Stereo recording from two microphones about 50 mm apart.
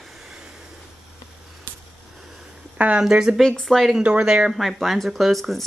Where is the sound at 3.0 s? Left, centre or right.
Centre.